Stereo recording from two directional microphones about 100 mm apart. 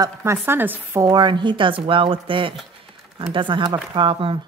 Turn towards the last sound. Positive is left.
turn(degrees=-60)  # may be behind; listen again after turning